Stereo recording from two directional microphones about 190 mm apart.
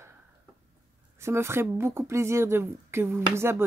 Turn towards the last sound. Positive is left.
turn(degrees=-15)  # may be behind; listen again after turning